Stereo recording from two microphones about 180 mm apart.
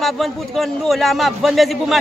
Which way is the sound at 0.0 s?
Centre (ahead or behind).